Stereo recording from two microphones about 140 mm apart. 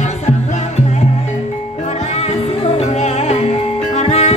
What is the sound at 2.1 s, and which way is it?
Music, 50° left (ahead or behind).